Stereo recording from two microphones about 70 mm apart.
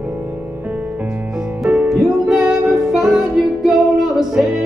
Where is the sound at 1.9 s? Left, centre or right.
Centre.